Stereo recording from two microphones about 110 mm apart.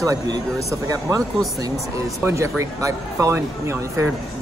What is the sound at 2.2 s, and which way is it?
Speech, 25° right (ahead or behind).